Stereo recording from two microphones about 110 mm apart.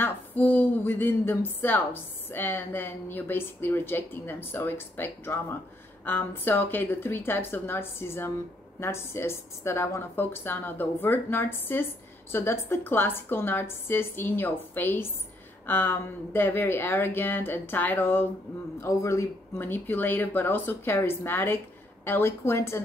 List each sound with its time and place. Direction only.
0.0 s speech: 15° left (ahead or behind)